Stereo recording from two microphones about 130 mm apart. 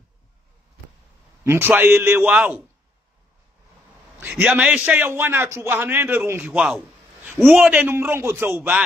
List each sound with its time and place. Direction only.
1.4 s a man's voice: 20° right (ahead or behind)
4.2 s a man's voice: 10° right (ahead or behind)